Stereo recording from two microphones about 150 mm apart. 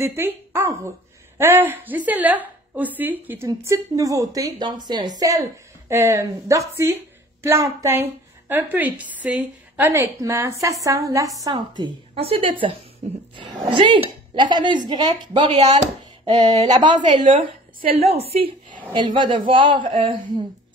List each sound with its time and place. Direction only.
0.0 s a woman's voice: 15° right (ahead or behind); by 12.7 s 35° right (ahead or behind)
13.0 s a sound: 45° right (ahead or behind)
13.5 s a woman's voice: 35° right (ahead or behind)
17.9 s speech: 40° right (ahead or behind)